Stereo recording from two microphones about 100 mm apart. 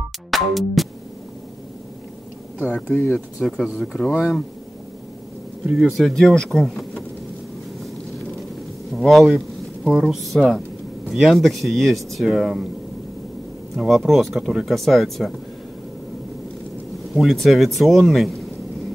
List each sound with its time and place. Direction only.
0.3 s music: centre (ahead or behind)
2.6 s speech: 15° left (ahead or behind)
3.4 s speech: centre (ahead or behind)
5.8 s speech: centre (ahead or behind)
8.9 s speech: centre (ahead or behind)
13.7 s speech: centre (ahead or behind)
17.1 s speech: centre (ahead or behind)